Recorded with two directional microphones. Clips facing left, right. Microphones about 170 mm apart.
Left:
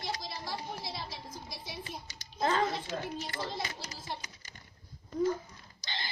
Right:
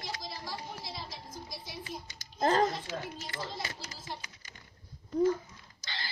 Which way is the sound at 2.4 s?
40° right (ahead or behind).